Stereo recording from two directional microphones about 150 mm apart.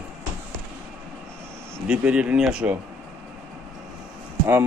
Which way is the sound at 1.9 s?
5° right (ahead or behind).